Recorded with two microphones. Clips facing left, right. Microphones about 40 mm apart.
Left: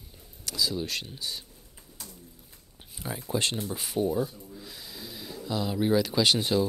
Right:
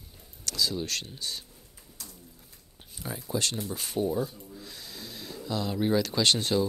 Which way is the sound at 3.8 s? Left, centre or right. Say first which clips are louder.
Left 1 dB; centre.